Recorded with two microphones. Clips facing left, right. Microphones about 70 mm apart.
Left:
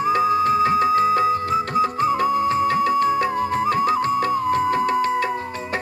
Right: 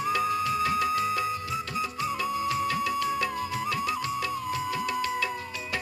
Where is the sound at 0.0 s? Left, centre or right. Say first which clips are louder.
Left 9 dB; left.